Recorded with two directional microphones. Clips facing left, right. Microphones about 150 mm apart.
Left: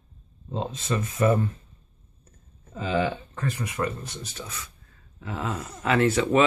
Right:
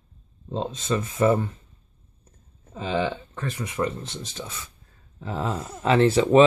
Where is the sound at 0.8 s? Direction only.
25° right (ahead or behind).